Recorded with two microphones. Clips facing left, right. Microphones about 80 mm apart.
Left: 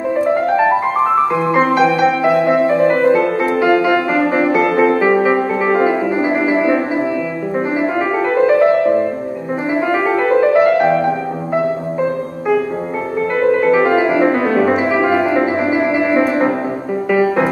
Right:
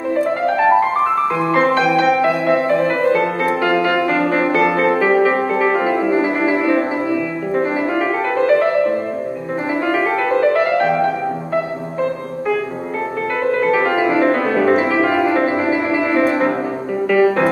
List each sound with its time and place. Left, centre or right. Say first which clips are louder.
0.1 s music: left 2 dB; centre
7.5 s piano: left 1 dB; centre
8.4 s music: left 2 dB; centre
9.7 s music: left 2 dB; centre
13.6 s music: left 1 dB; centre